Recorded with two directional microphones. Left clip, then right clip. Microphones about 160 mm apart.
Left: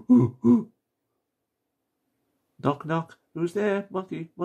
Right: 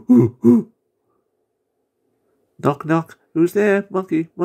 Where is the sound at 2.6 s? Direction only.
25° right (ahead or behind).